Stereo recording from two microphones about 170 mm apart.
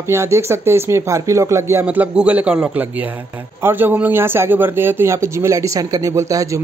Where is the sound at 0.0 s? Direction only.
15° right (ahead or behind).